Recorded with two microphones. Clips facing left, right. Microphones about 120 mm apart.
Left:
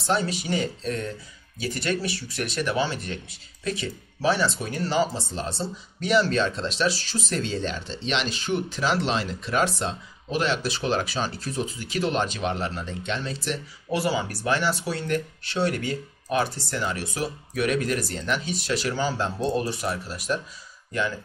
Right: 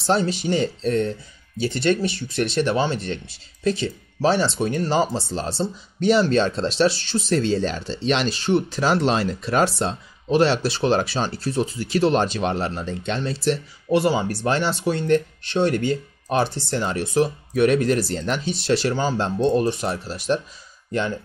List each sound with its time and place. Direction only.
0.0 s speech: 30° right (ahead or behind)